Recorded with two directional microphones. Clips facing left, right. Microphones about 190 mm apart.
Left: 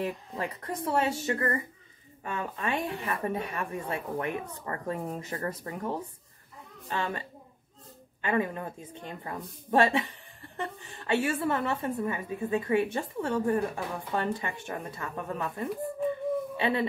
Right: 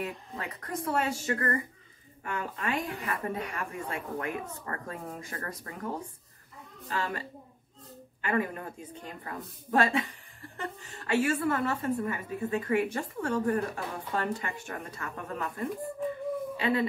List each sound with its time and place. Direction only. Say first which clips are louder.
0.0 s a woman's voice: left 4 dB; 25° left (ahead or behind)
6.9 s a woman's voice: left 1 dB; 25° left (ahead or behind)